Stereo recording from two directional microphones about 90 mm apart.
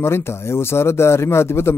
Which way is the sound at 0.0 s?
30° left (ahead or behind).